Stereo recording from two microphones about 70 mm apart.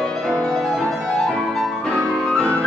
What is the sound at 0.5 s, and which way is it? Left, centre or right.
Music, centre.